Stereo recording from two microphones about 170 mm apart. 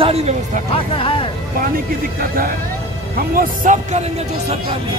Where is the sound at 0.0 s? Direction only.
40° right (ahead or behind).